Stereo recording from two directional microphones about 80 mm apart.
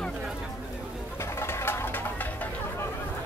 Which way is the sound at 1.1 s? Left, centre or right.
Left.